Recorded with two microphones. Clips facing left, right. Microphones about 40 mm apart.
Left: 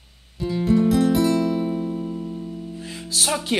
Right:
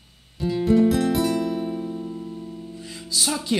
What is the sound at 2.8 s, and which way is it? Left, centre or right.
Music, left.